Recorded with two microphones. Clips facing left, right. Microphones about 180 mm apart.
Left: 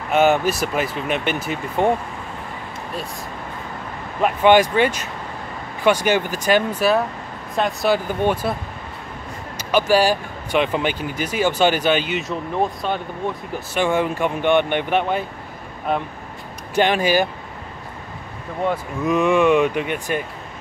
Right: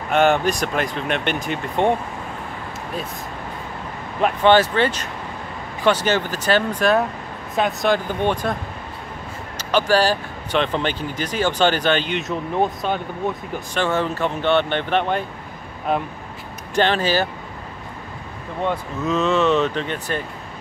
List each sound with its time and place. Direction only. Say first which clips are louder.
0.1 s speech: left 1 dB; 5° left (ahead or behind)
4.2 s speech: left 1 dB; 10° left (ahead or behind)
9.6 s speech: left 1 dB; 10° left (ahead or behind)
13.7 s speech: left 2 dB; 10° left (ahead or behind)
16.7 s speech: left 2 dB; 10° left (ahead or behind)
18.6 s speech: left 1 dB; 10° left (ahead or behind)